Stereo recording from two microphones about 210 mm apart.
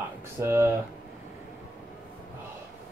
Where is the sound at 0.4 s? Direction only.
10° right (ahead or behind).